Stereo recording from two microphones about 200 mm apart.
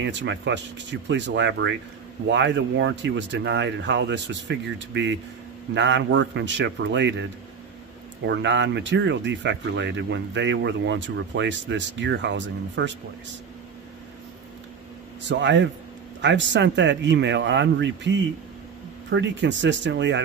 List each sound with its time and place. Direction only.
0.0 s speech: 65° right (ahead or behind)
8.3 s speech: 65° right (ahead or behind)
15.2 s speech: 65° right (ahead or behind)